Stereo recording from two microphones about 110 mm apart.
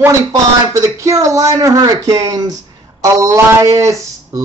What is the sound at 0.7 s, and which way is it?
Speech, 30° right (ahead or behind).